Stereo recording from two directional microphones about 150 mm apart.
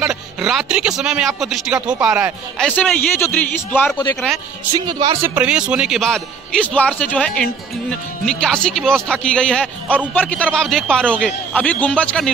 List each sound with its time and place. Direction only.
0.0 s a man's voice: 5° right (ahead or behind)
2.7 s speech: 15° left (ahead or behind)
4.7 s speech: 30° right (ahead or behind)
5.2 s a man's voice: 10° right (ahead or behind); by 12.3 s 5° left (ahead or behind)